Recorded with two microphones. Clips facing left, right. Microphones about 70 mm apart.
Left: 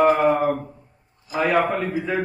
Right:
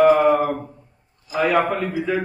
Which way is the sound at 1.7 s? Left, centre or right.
Left.